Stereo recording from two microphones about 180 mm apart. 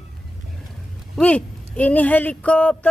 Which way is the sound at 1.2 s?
5° left (ahead or behind).